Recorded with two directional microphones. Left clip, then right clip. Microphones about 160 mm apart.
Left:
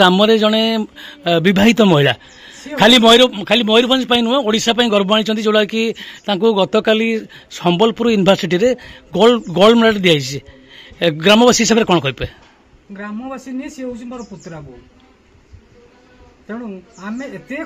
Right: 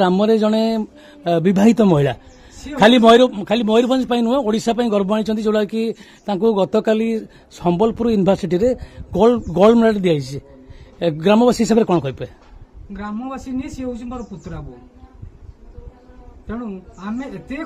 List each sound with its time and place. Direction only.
0.0 s speech: 5° right (ahead or behind)
12.9 s a man's voice: 20° right (ahead or behind)
16.4 s a man's voice: 20° right (ahead or behind)